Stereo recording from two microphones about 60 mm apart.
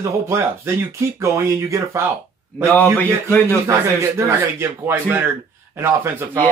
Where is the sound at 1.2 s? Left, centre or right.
Right.